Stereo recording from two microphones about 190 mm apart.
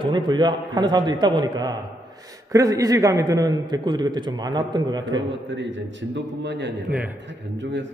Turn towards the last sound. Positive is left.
turn(degrees=-70)  # may be behind; listen again after turning